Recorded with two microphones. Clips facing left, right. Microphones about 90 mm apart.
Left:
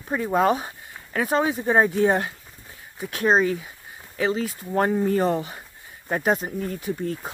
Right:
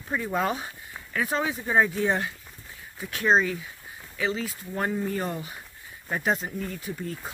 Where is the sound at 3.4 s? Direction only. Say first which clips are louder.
Left 4 dB; 45° left (ahead or behind); by 6.5 s 25° left (ahead or behind).